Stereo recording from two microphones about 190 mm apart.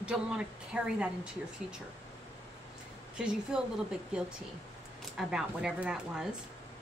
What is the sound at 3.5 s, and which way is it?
Speech, 5° right (ahead or behind).